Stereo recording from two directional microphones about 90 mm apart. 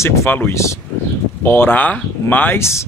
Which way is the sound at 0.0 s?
30° left (ahead or behind).